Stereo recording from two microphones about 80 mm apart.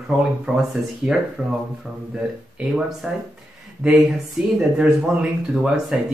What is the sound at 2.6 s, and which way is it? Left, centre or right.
Speech, centre.